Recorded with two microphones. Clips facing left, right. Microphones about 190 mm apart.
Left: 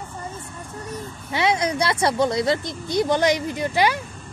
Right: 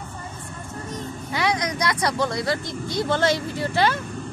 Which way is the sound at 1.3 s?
25° left (ahead or behind).